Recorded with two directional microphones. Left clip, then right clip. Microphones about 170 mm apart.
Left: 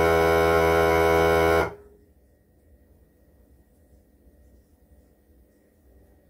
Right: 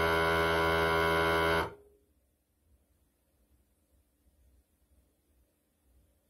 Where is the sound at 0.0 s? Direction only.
20° right (ahead or behind).